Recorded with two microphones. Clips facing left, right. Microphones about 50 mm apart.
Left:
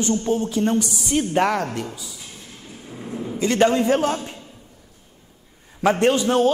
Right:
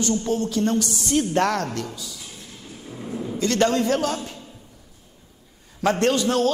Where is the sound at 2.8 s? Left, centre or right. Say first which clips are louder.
Even; centre.